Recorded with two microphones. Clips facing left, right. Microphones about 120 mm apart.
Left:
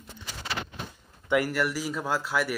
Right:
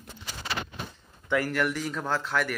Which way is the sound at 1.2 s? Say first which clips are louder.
Left 1 dB; 10° left (ahead or behind).